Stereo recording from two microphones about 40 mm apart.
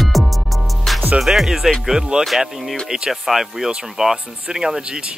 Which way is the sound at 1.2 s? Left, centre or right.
Centre.